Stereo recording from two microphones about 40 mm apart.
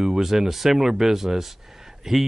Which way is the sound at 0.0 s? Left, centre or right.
Centre.